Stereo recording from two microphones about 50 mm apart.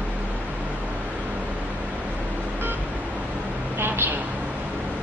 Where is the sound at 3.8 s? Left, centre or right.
Right.